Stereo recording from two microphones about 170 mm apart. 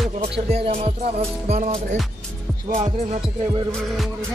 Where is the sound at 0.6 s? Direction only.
35° right (ahead or behind).